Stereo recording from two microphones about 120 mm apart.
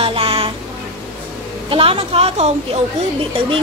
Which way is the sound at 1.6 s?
50° right (ahead or behind).